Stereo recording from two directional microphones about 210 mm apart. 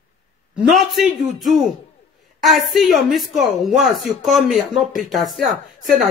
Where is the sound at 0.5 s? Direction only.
Centre (ahead or behind).